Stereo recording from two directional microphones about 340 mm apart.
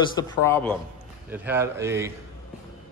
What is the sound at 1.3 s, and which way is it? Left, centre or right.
Speech, centre.